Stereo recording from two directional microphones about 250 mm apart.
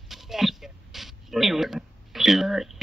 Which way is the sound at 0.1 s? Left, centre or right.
Centre.